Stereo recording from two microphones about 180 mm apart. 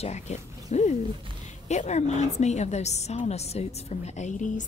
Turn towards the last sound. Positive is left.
turn(degrees=45)  # may be behind; listen again after turning